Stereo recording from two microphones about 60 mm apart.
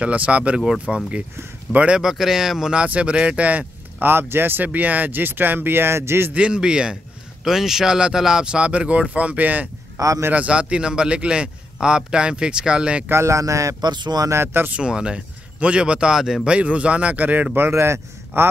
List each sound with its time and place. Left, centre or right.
0.0 s a man's voice: right
2.0 s speech: centre; by 6.3 s right
6.3 s a man's voice: centre
9.9 s a man's voice: right
10.3 s a man's voice: centre
13.1 s speech: right
14.3 s speech: right
14.7 s a man's voice: centre
16.4 s speech: right
17.6 s a man's voice: right